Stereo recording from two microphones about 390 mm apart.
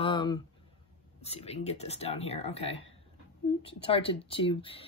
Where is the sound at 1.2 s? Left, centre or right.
Centre.